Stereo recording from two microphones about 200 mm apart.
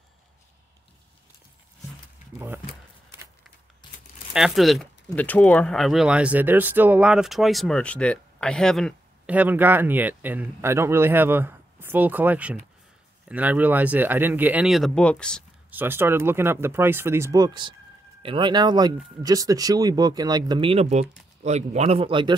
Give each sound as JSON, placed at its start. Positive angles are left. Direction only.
{"t": 2.3, "sound": "speech", "side_deg": -10}
{"t": 4.3, "sound": "speech", "side_deg": 0}
{"t": 15.7, "sound": "speech", "side_deg": -10}